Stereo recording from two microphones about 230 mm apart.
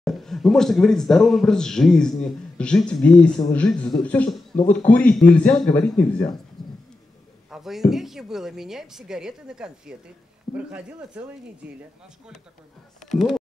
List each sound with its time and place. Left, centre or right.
0.0 s speech: centre
6.6 s a sound: centre
7.5 s speech: centre
13.0 s speech: centre